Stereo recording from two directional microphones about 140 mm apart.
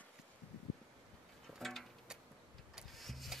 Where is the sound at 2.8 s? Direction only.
Centre (ahead or behind).